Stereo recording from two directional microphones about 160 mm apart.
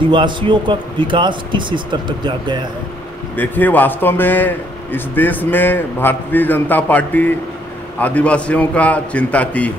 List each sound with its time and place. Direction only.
0.1 s a man's voice: 30° right (ahead or behind)
3.3 s a man's voice: 10° left (ahead or behind)